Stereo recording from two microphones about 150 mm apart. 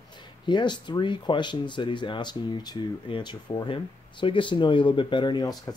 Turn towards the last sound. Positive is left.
turn(degrees=25)  # may be behind; listen again after turning